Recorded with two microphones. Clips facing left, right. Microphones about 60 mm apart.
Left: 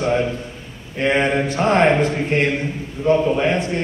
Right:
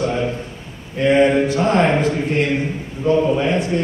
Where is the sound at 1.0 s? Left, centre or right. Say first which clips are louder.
Right 4 dB; left.